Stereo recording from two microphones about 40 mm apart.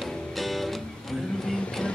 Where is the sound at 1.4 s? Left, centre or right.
Left.